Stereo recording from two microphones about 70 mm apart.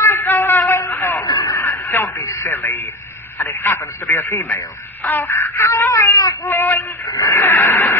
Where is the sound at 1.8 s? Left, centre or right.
Left.